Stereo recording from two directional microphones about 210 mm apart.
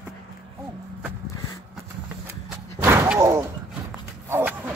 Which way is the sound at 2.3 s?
10° right (ahead or behind).